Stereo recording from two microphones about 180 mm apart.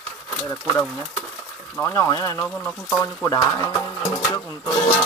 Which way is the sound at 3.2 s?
20° left (ahead or behind).